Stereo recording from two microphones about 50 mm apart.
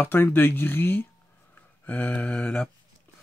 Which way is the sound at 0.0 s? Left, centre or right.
Left.